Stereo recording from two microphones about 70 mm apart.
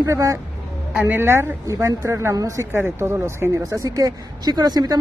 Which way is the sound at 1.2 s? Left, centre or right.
Right.